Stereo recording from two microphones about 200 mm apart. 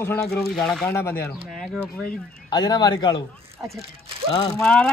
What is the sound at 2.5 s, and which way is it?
Speech, 20° left (ahead or behind).